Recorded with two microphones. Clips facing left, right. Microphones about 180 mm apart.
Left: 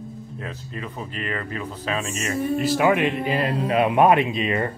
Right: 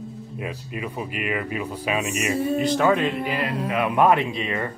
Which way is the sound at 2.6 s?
5° left (ahead or behind).